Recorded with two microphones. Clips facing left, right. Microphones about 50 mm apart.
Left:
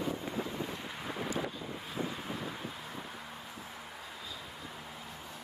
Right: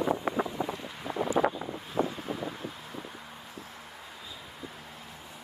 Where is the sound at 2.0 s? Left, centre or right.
Centre.